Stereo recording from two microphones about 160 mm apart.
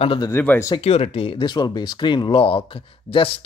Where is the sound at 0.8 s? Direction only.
40° left (ahead or behind).